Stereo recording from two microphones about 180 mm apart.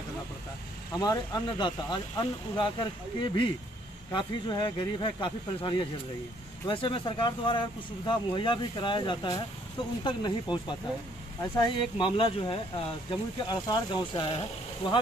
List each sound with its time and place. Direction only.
0.9 s speech: 20° left (ahead or behind)